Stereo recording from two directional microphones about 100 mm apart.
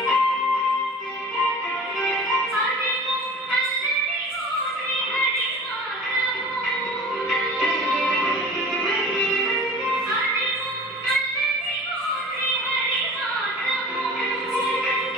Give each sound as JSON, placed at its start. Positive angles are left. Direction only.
{"t": 0.0, "sound": "music", "side_deg": 0}
{"t": 7.2, "sound": "music", "side_deg": 0}